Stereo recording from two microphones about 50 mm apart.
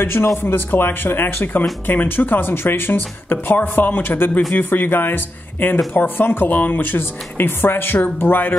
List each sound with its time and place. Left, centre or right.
0.0 s speech: left